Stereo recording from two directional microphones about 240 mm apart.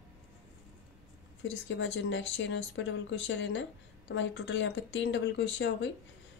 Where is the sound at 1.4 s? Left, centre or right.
Left.